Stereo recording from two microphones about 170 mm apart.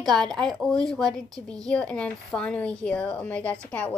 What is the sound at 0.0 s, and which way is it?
Speech, centre (ahead or behind).